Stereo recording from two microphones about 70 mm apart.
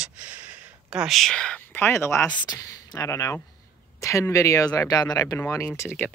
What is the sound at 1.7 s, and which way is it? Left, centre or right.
Speech, left.